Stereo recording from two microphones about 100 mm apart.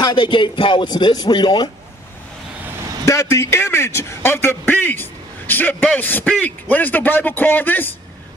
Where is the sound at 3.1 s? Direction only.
30° left (ahead or behind).